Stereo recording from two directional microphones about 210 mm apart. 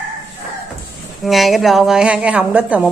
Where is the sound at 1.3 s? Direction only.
Centre (ahead or behind).